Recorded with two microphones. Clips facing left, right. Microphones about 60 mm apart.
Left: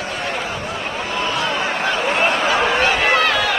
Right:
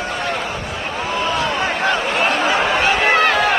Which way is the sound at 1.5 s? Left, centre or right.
Right.